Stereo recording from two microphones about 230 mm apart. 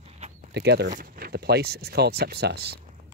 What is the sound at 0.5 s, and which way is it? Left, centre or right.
Speech, right.